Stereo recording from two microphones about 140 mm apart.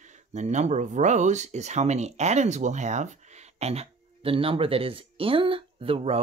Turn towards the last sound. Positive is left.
turn(degrees=-45)  # may be behind; listen again after turning